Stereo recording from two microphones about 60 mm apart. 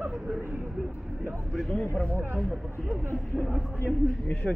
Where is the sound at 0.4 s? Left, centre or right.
Right.